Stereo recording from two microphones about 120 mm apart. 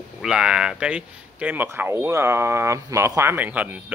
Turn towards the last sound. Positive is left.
turn(degrees=-15)  # may be behind; listen again after turning